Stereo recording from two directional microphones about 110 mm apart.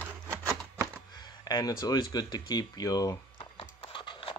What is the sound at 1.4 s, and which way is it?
Speech, 35° left (ahead or behind).